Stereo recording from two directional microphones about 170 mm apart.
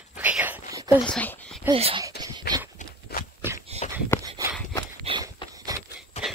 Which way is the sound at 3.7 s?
40° right (ahead or behind).